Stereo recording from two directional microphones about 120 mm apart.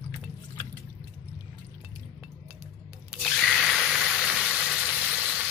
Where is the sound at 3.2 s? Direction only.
Centre (ahead or behind).